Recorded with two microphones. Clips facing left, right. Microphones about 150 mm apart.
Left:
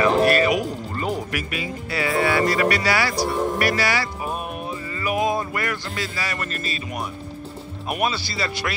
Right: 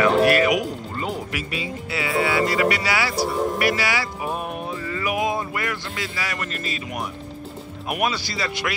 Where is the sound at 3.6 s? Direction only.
15° right (ahead or behind).